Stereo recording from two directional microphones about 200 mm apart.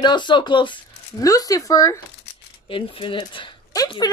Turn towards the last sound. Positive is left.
turn(degrees=20)  # may be behind; listen again after turning